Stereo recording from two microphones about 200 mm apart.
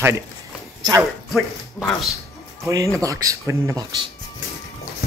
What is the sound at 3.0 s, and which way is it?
Speech, 15° right (ahead or behind).